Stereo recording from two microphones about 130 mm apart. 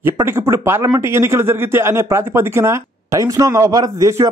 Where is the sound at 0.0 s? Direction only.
20° right (ahead or behind).